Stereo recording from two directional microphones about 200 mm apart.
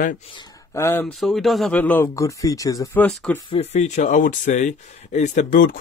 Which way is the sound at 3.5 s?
35° left (ahead or behind).